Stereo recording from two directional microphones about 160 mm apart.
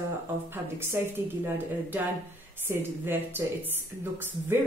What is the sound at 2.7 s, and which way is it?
Speech, 15° right (ahead or behind).